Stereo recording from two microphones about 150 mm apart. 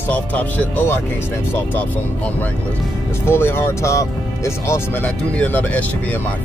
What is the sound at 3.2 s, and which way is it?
Vehicle, 15° left (ahead or behind).